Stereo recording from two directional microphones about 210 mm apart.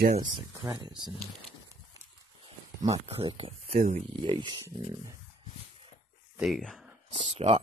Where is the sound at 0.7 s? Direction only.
20° right (ahead or behind).